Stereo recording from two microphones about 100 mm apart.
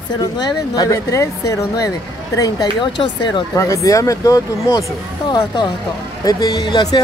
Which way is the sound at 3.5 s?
30° left (ahead or behind).